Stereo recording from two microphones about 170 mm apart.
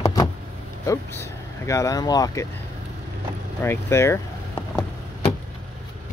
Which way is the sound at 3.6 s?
15° left (ahead or behind).